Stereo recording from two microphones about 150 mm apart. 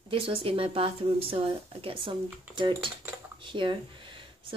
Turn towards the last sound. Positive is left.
turn(degrees=-35)  # may be behind; listen again after turning